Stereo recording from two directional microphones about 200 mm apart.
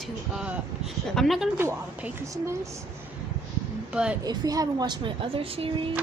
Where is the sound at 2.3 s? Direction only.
15° right (ahead or behind).